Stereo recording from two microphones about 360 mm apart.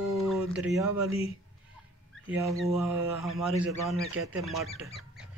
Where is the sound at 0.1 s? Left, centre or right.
Centre.